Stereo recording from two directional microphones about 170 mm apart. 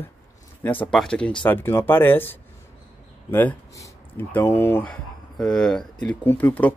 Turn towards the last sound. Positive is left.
turn(degrees=10)  # may be behind; listen again after turning